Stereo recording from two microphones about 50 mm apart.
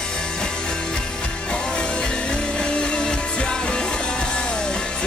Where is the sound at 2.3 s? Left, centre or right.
Centre.